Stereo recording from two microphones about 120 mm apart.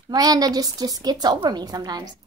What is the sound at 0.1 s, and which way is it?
A woman's voice, 30° right (ahead or behind).